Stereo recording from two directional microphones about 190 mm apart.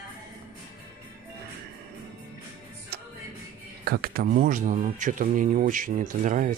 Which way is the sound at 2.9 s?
60° right (ahead or behind).